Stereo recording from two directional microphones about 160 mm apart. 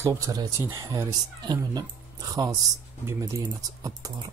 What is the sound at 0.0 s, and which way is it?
Speech, 20° right (ahead or behind).